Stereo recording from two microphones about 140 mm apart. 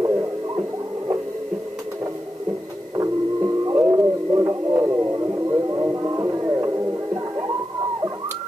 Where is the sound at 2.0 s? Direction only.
25° right (ahead or behind).